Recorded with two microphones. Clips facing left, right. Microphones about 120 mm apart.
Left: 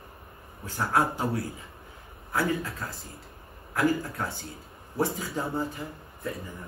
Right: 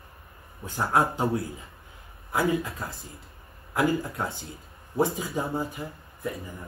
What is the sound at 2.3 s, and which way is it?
Speech, 15° right (ahead or behind).